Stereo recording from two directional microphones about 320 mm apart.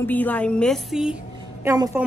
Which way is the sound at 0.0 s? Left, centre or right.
Centre.